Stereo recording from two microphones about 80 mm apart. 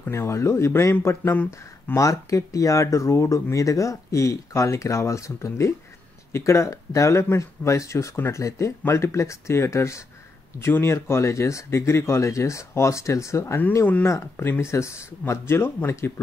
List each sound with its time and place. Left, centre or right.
0.0 s speech: left
1.3 s speech: left
2.0 s speech: left